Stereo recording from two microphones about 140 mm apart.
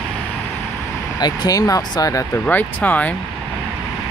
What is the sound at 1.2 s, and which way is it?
Speech, 30° left (ahead or behind).